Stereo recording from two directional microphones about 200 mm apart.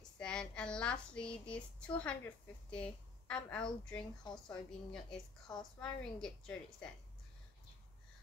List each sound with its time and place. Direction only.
0.2 s a sound: 5° left (ahead or behind)
1.1 s speech: 5° left (ahead or behind)
4.2 s a woman's voice: 20° left (ahead or behind)
4.6 s speech: centre (ahead or behind)